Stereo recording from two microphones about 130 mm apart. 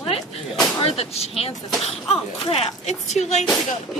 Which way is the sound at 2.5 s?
60° left (ahead or behind).